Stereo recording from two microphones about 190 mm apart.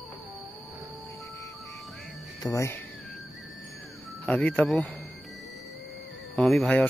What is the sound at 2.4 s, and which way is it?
Speech, 15° left (ahead or behind).